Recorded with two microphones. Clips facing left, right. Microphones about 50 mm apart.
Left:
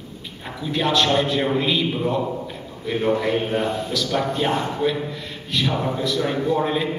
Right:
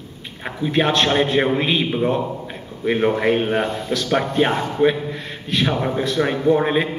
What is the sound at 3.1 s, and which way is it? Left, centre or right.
Speech, right.